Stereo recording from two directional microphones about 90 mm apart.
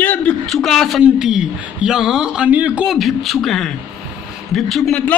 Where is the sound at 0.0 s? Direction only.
15° left (ahead or behind).